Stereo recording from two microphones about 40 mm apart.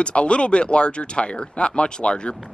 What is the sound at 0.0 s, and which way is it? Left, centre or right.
Speech, left.